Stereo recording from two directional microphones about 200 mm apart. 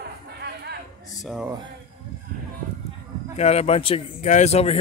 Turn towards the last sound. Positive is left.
turn(degrees=30)  # may be behind; listen again after turning